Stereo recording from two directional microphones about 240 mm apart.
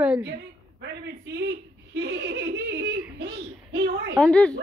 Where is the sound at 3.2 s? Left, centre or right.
Right.